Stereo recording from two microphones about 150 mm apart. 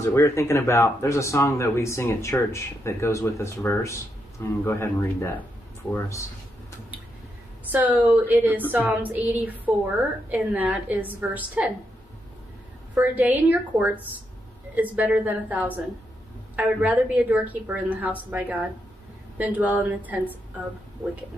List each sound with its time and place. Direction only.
0.0 s speech: 20° left (ahead or behind)
7.7 s a woman's voice: 10° right (ahead or behind)
12.9 s a woman's voice: 10° right (ahead or behind)